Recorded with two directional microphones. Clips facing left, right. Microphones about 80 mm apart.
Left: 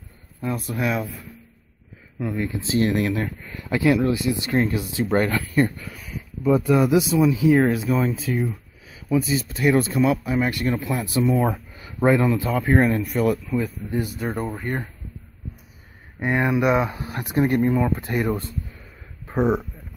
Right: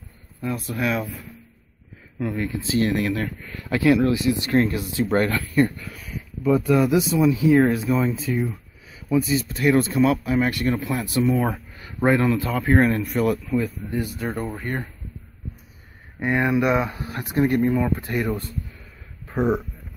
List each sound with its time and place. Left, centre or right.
0.4 s speech: centre
2.1 s speech: centre
2.6 s speech: left; by 14.8 s centre
16.2 s speech: centre